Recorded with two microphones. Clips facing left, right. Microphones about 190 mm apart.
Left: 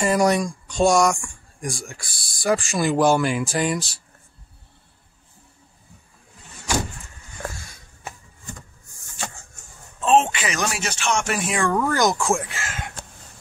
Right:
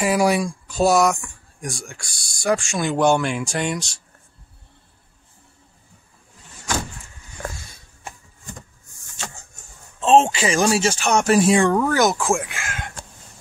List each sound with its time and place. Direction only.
0.0 s speech: 5° right (ahead or behind)
10.0 s speech: 30° right (ahead or behind)
11.7 s speech: 5° right (ahead or behind)